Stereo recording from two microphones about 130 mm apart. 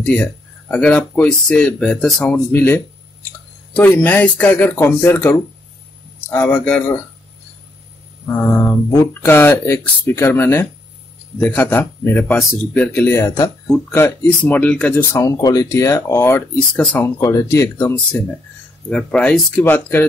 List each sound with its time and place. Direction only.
0.0 s speech: 10° left (ahead or behind)
8.3 s speech: 20° left (ahead or behind)
15.1 s speech: 30° left (ahead or behind)
17.2 s speech: 25° left (ahead or behind)
18.9 s speech: 5° left (ahead or behind)